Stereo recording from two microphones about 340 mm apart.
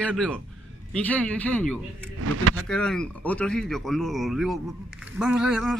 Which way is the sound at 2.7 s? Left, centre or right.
Centre.